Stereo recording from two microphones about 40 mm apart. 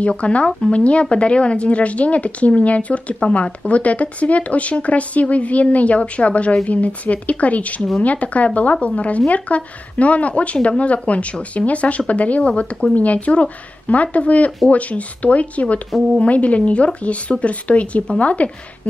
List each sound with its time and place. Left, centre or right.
0.2 s speech: left